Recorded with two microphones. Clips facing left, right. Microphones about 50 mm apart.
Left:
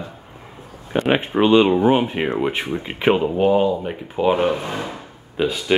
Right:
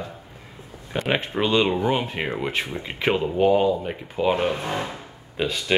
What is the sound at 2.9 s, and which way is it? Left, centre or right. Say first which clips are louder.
Speech: left 5 dB; centre.